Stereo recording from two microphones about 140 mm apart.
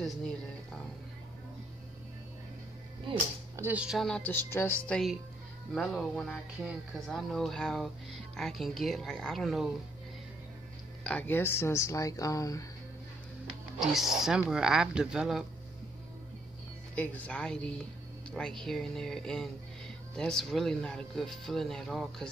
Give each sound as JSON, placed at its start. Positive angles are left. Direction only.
{"t": 0.0, "sound": "speech", "side_deg": 5}
{"t": 3.5, "sound": "speech", "side_deg": -10}
{"t": 5.7, "sound": "speech", "side_deg": 5}
{"t": 11.1, "sound": "speech", "side_deg": 10}
{"t": 13.7, "sound": "speech", "side_deg": 0}
{"t": 16.9, "sound": "speech", "side_deg": 10}